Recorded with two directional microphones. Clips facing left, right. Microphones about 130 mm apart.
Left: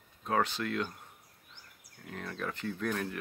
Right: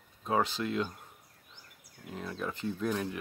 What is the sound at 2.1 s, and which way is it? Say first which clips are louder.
Speech: right 1 dB; 20° right (ahead or behind).